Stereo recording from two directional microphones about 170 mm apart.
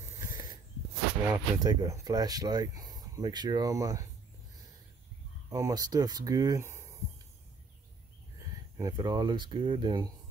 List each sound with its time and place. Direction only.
0.2 s a sound: 20° right (ahead or behind)
1.2 s speech: 20° right (ahead or behind)
5.5 s speech: 20° right (ahead or behind)
8.4 s speech: 20° right (ahead or behind)